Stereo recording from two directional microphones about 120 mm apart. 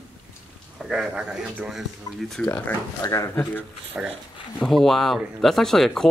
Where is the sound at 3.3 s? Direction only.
15° left (ahead or behind).